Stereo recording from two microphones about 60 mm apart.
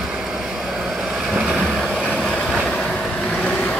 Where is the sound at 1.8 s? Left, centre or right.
Centre.